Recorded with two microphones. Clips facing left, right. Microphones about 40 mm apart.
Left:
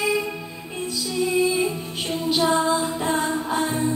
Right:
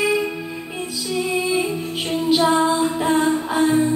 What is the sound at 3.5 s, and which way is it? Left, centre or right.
Music, centre.